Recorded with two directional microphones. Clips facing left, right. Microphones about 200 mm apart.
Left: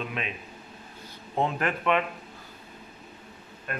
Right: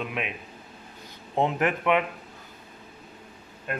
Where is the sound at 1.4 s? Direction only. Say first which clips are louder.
Right 3 dB; 20° right (ahead or behind).